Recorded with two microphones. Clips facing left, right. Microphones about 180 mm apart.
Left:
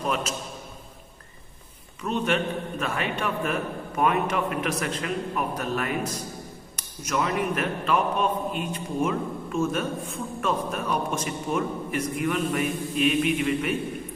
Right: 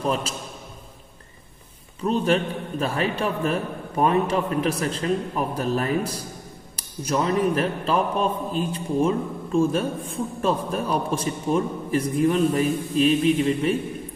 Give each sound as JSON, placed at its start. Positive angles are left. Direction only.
{"t": 2.0, "sound": "a man's voice", "side_deg": -35}